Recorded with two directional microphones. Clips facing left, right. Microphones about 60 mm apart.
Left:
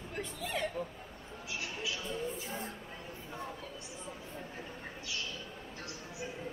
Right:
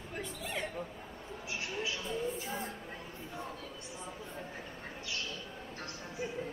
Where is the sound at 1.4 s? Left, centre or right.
Right.